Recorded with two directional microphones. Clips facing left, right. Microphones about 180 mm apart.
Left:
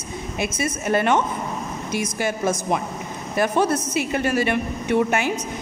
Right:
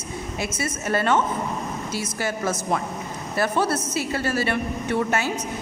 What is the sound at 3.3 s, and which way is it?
A woman's voice, 15° left (ahead or behind).